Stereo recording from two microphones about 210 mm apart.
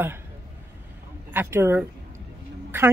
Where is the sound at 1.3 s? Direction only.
10° right (ahead or behind).